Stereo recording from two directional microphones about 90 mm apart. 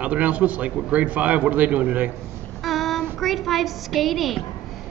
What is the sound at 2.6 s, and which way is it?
A woman's voice, centre (ahead or behind).